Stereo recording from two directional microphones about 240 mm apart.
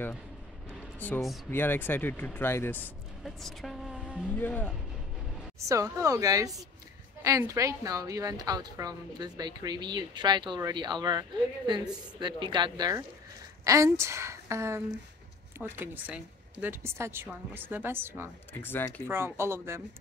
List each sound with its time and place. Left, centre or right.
0.9 s speech: centre
4.3 s speech: centre
5.7 s a woman's voice: centre
18.5 s speech: centre
19.0 s a woman's voice: centre